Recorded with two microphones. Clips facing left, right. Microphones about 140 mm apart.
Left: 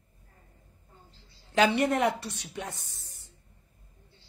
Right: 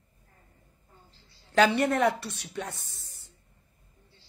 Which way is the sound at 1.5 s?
15° left (ahead or behind).